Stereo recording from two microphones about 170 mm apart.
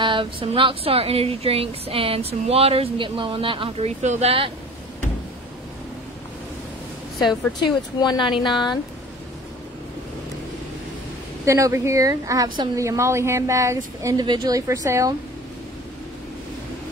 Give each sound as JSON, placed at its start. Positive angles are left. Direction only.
{"t": 0.0, "sound": "speech", "side_deg": -30}
{"t": 8.0, "sound": "speech", "side_deg": 25}
{"t": 11.4, "sound": "a woman's voice", "side_deg": -15}